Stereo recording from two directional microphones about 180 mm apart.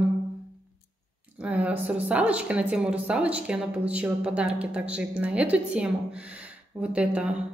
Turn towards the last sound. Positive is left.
turn(degrees=-5)  # may be behind; listen again after turning